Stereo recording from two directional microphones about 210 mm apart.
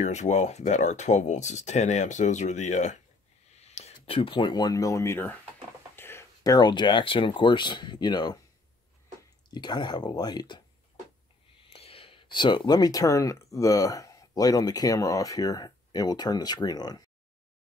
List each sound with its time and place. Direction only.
0.0 s speech: 35° left (ahead or behind)
9.5 s speech: 20° left (ahead or behind)
11.6 s speech: 25° left (ahead or behind)